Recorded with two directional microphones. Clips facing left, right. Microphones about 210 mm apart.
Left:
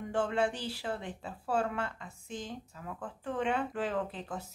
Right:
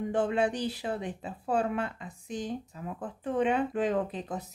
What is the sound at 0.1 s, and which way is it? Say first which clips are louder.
Speech: right 2 dB; 20° right (ahead or behind).